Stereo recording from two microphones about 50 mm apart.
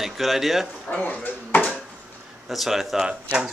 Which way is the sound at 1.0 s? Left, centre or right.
Left.